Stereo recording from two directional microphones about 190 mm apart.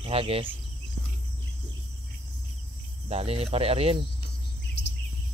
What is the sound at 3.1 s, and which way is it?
Speech, 35° right (ahead or behind).